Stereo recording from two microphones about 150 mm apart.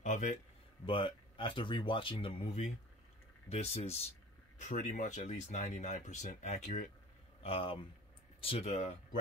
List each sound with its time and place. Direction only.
0.0 s speech: 55° left (ahead or behind)
0.8 s speech: 35° left (ahead or behind)
4.6 s speech: 55° left (ahead or behind)
7.4 s speech: 40° left (ahead or behind)